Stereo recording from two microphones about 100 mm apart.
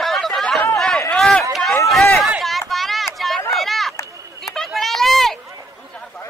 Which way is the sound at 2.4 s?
Centre (ahead or behind).